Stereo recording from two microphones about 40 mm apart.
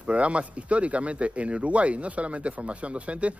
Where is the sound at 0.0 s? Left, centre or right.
Right.